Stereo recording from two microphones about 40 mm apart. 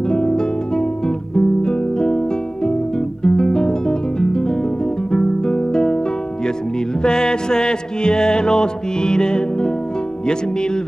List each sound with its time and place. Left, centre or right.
0.1 s guitar: centre
5.1 s music: centre
7.0 s music: centre